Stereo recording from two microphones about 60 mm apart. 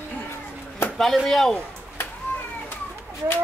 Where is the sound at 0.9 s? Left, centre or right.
Centre.